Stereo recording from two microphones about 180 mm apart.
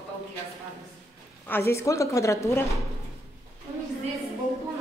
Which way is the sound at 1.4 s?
15° left (ahead or behind).